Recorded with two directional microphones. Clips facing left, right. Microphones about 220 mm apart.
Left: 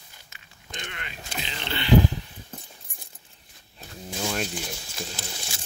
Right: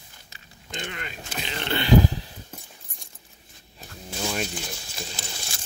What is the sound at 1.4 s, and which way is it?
Vehicle, 50° right (ahead or behind).